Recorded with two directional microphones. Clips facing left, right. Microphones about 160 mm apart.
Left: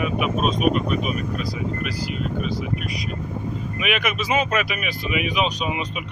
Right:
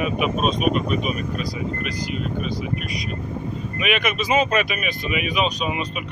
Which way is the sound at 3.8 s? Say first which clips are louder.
Right 2 dB; 10° left (ahead or behind).